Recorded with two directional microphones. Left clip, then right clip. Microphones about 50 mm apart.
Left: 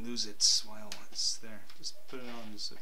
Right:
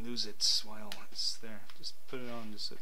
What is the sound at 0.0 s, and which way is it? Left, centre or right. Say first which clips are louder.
Speech: left 3 dB; left.